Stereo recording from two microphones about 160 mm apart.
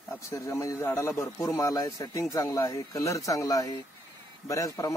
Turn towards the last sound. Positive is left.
turn(degrees=20)  # may be behind; listen again after turning